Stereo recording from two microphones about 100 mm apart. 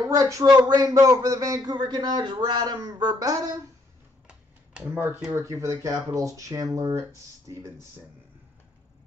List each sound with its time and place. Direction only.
0.0 s speech: 35° right (ahead or behind)
4.3 s computer keyboard: 10° right (ahead or behind)
4.9 s speech: 20° right (ahead or behind)
5.3 s speech: 30° right (ahead or behind)